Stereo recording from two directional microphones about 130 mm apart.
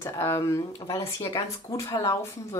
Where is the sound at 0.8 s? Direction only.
40° left (ahead or behind).